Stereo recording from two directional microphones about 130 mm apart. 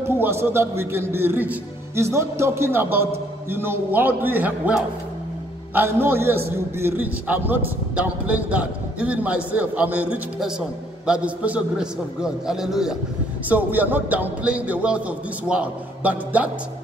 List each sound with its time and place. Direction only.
0.0 s a man's voice: 20° right (ahead or behind)